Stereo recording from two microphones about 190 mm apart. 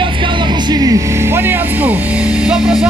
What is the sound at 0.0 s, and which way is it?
Speech, 25° right (ahead or behind).